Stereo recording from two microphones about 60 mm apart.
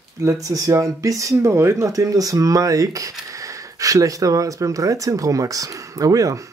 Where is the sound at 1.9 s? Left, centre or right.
Right.